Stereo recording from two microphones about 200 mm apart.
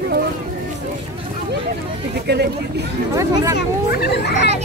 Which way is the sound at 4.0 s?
55° left (ahead or behind).